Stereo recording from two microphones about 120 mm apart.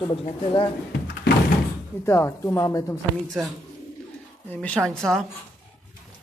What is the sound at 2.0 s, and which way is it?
Speech, 20° left (ahead or behind).